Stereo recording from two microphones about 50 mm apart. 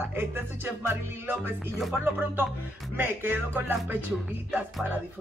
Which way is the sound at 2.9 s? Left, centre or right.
Right.